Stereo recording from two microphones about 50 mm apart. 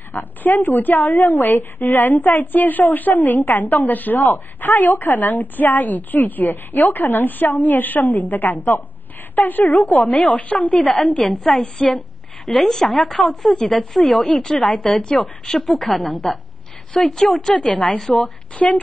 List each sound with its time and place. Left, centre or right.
0.1 s a woman's voice: left
11.2 s a woman's voice: centre
11.6 s speech: centre
12.4 s a woman's voice: centre
18.6 s a woman's voice: left